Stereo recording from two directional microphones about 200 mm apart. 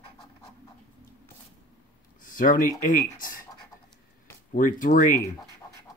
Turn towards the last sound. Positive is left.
turn(degrees=40)  # may be behind; listen again after turning